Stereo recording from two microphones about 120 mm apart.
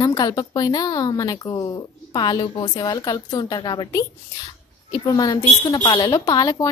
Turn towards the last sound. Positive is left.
turn(degrees=30)  # may be behind; listen again after turning